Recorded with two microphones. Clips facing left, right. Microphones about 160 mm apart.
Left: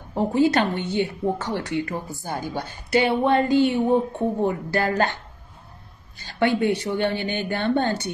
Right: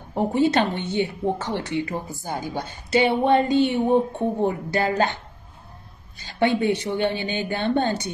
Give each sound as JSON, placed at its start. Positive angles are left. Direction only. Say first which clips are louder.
{"t": 0.1, "sound": "speech", "louder": "left 1 dB", "side_deg": -20}